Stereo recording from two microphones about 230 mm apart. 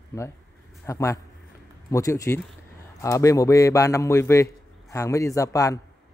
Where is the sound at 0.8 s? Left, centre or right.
Centre.